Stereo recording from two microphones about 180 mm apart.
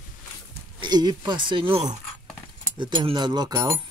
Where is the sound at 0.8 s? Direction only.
20° right (ahead or behind).